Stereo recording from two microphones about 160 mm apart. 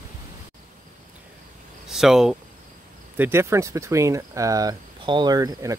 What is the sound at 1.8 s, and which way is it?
Speech, centre (ahead or behind).